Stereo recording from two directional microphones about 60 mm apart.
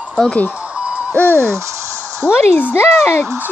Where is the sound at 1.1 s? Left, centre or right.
Left.